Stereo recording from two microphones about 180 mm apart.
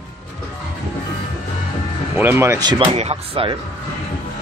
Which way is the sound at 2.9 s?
35° right (ahead or behind).